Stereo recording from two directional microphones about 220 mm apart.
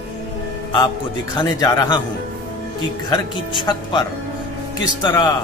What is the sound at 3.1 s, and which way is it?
Speech, 20° left (ahead or behind).